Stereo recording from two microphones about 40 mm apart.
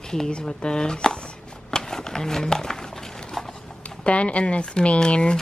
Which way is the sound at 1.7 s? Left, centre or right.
Centre.